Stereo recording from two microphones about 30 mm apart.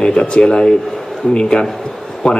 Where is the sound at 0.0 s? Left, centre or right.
Left.